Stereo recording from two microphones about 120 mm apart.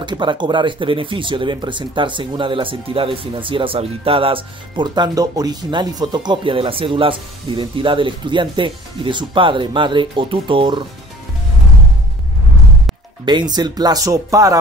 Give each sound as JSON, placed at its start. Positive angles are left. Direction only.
{"t": 0.0, "sound": "speech", "side_deg": -40}
{"t": 13.2, "sound": "speech", "side_deg": -40}